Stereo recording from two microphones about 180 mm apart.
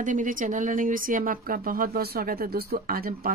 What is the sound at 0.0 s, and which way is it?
A woman's voice, 45° right (ahead or behind).